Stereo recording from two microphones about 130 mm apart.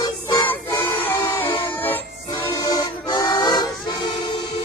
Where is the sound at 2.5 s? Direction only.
25° left (ahead or behind).